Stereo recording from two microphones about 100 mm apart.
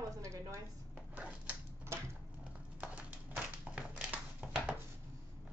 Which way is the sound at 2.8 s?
10° right (ahead or behind).